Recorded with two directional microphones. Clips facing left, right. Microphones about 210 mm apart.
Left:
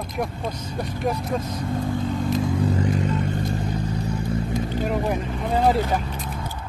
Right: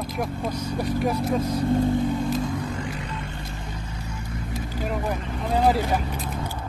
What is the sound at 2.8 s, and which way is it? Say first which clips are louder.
Vehicle: left 9 dB; 45° left (ahead or behind).